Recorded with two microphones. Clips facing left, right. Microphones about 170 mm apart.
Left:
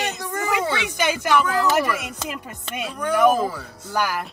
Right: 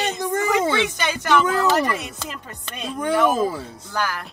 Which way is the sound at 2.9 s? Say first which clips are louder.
Left 1 dB; 25° right (ahead or behind).